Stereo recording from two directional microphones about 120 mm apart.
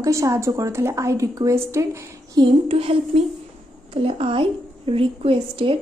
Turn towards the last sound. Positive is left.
turn(degrees=-45)  # may be behind; listen again after turning